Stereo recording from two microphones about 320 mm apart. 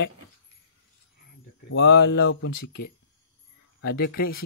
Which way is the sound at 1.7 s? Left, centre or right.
Left.